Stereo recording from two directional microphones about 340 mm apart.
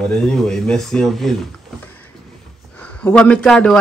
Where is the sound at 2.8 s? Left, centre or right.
Centre.